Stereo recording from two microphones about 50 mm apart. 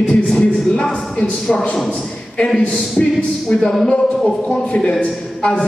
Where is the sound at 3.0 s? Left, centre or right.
Centre.